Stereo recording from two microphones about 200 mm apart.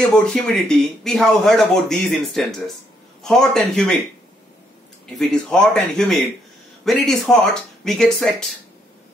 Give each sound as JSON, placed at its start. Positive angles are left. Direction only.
{"t": 0.1, "sound": "speech", "side_deg": 5}
{"t": 5.1, "sound": "speech", "side_deg": 0}